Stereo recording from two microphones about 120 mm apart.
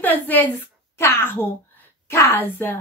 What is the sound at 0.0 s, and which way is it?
A woman's voice, 15° left (ahead or behind).